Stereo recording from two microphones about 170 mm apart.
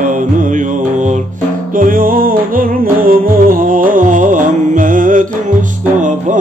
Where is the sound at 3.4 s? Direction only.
50° right (ahead or behind).